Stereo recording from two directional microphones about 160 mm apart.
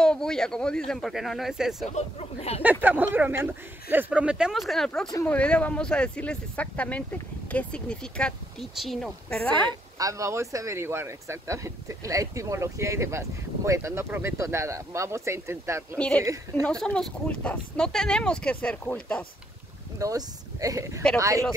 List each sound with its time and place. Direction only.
0.0 s speech: 5° left (ahead or behind)
2.0 s speech: 40° left (ahead or behind)
2.6 s speech: 10° right (ahead or behind); by 9.6 s 5° left (ahead or behind)
9.7 s speech: 20° right (ahead or behind)
16.0 s speech: 5° left (ahead or behind)
20.0 s speech: 20° right (ahead or behind)